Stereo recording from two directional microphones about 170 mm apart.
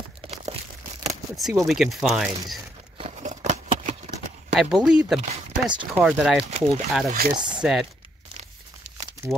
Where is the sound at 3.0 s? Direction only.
40° right (ahead or behind).